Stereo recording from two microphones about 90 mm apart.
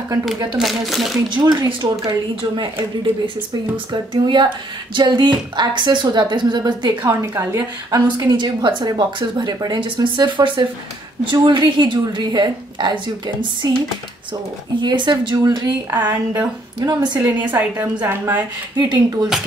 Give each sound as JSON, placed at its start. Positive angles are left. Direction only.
{"t": 0.6, "sound": "speech", "side_deg": 0}
{"t": 1.3, "sound": "a woman's voice", "side_deg": -55}
{"t": 7.1, "sound": "a woman's voice", "side_deg": -35}
{"t": 14.8, "sound": "a woman's voice", "side_deg": -55}
{"t": 15.9, "sound": "a woman's voice", "side_deg": -20}
{"t": 16.8, "sound": "a woman's voice", "side_deg": -50}
{"t": 17.3, "sound": "a woman's voice", "side_deg": -20}
{"t": 18.8, "sound": "a woman's voice", "side_deg": -50}